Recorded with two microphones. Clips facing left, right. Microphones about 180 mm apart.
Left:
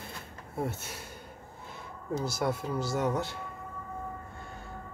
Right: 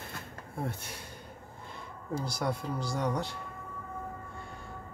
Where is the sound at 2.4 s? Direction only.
5° left (ahead or behind).